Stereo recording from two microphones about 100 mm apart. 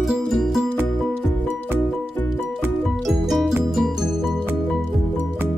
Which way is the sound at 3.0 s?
Centre (ahead or behind).